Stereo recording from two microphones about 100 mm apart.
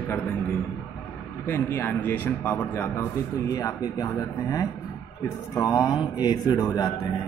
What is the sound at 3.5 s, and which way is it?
A man's voice, 35° left (ahead or behind).